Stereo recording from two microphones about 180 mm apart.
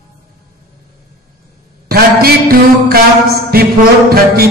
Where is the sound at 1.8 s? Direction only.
55° right (ahead or behind).